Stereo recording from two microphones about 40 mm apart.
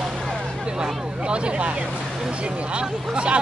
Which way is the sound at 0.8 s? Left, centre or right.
Right.